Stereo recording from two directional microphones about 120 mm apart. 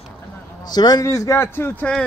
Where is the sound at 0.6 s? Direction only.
35° left (ahead or behind).